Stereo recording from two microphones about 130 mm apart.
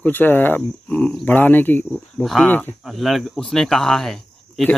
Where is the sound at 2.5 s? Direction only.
15° left (ahead or behind).